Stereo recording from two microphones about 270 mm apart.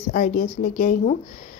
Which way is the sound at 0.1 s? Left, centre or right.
Left.